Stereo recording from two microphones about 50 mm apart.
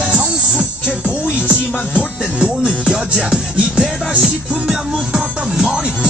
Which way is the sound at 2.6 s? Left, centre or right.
Centre.